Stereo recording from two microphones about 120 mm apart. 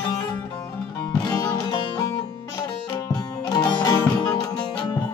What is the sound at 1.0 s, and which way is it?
Music, 30° left (ahead or behind).